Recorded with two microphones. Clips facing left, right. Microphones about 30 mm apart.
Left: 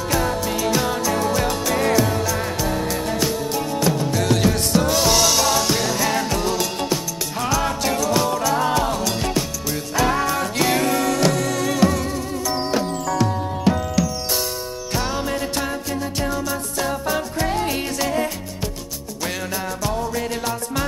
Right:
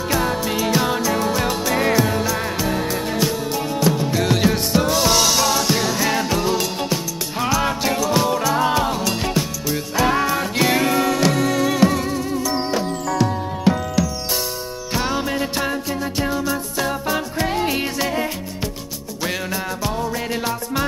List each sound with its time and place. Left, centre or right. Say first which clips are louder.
0.1 s music: right 1 dB; centre
14.9 s music: right 2 dB; centre